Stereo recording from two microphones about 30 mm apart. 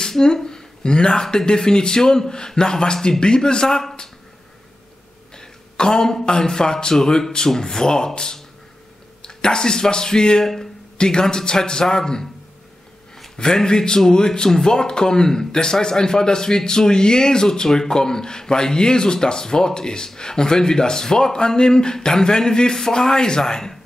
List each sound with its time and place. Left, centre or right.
0.0 s a sound: centre
1.2 s a man's voice: left
5.3 s a sound: left
6.3 s a man's voice: left
10.4 s speech: centre
11.0 s a man's voice: left
13.4 s a man's voice: left